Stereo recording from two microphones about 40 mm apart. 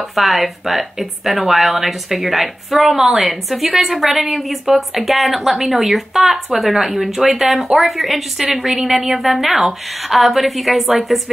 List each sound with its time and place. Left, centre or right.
0.1 s a woman's voice: centre